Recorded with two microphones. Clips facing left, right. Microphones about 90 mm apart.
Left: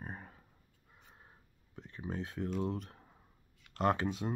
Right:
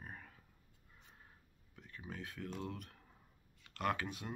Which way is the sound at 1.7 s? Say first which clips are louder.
Left 8 dB; 30° left (ahead or behind).